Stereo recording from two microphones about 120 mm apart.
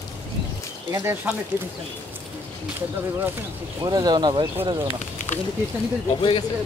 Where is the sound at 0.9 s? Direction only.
20° right (ahead or behind).